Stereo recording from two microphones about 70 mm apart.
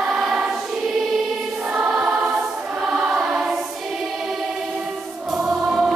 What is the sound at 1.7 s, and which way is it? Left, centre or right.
Choir, centre.